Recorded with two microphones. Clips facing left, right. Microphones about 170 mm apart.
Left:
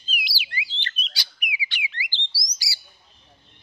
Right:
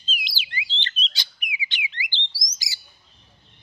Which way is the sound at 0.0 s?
25° right (ahead or behind).